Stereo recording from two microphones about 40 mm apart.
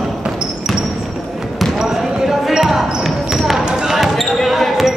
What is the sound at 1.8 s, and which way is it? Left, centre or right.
Basketball bounce, centre.